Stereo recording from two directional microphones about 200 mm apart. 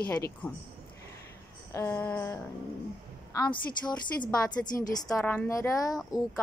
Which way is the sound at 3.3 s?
20° left (ahead or behind).